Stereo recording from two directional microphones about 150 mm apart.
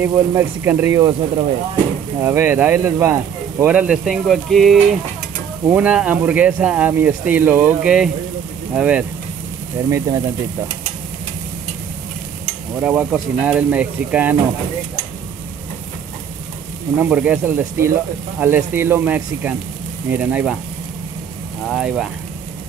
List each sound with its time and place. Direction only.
0.0 s speech: 15° right (ahead or behind)
2.1 s speech: 15° right (ahead or behind)
9.8 s speech: 20° right (ahead or behind)
12.8 s speech: 10° right (ahead or behind)
17.0 s speech: 10° right (ahead or behind)
21.6 s speech: centre (ahead or behind)